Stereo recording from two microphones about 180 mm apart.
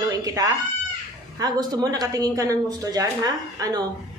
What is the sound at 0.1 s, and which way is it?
Speech, 20° right (ahead or behind).